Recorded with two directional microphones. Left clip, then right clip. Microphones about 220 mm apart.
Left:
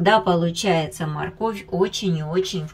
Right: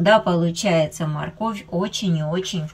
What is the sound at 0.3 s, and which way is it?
Speech, centre (ahead or behind).